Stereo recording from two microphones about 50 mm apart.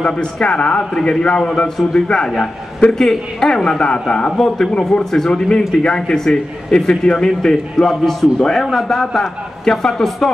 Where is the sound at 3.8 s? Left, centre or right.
Centre.